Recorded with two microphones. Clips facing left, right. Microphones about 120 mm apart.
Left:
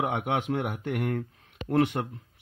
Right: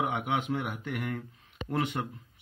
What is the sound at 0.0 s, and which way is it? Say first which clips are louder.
Speech: left 2 dB; 60° left (ahead or behind).